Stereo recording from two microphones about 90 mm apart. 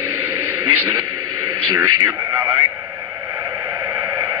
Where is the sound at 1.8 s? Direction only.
30° right (ahead or behind).